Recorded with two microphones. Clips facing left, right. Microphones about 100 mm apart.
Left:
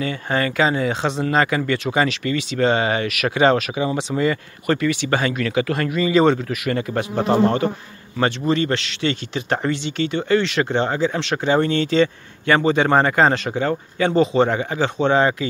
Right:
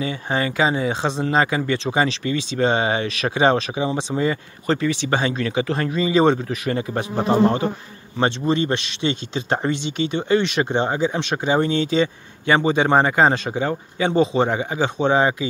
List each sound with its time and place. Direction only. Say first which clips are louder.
0.0 s speech: left 1 dB; 20° right (ahead or behind)